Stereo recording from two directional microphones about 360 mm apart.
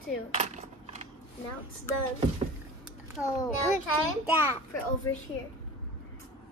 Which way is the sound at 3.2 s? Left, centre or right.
Centre.